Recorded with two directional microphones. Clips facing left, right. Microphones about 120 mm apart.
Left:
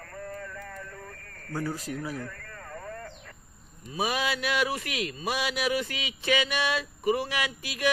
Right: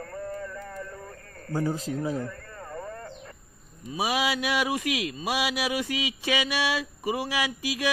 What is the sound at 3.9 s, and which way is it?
A man's voice, 15° right (ahead or behind).